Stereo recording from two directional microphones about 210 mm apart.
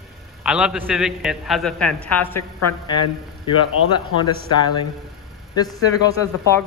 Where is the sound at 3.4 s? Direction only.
20° left (ahead or behind).